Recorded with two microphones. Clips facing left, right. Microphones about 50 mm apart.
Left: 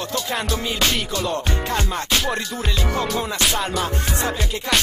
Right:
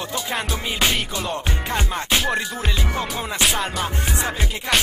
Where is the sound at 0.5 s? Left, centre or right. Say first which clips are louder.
Even; centre.